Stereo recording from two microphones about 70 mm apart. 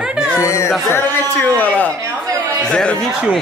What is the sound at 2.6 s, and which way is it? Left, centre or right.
Speech, centre.